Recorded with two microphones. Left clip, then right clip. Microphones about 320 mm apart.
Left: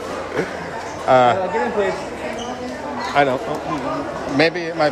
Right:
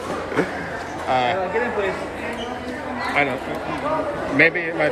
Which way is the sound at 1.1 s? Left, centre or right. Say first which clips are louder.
Left 7 dB; left.